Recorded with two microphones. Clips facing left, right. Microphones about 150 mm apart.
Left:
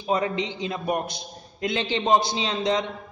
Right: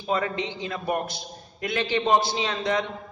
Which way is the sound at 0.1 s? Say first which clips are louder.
Left 2 dB; 20° left (ahead or behind).